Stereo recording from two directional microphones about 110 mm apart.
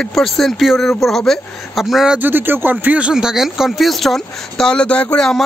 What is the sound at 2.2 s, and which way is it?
Speech, 20° right (ahead or behind).